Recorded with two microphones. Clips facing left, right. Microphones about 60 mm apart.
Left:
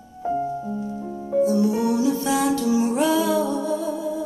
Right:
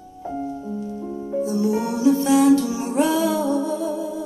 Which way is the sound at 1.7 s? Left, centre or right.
Right.